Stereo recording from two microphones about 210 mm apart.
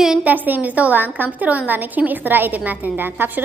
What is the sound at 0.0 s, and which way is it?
A woman's voice, 5° right (ahead or behind).